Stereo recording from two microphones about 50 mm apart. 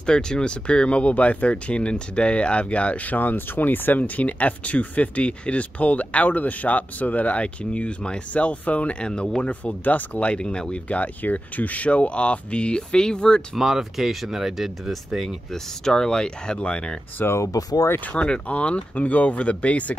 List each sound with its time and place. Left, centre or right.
0.0 s speech: centre; by 10.3 s left
10.3 s speech: centre
13.6 s speech: centre
17.4 s speech: left
18.0 s speech: left